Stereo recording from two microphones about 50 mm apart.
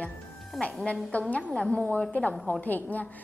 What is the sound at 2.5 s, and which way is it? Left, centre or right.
Speech, left.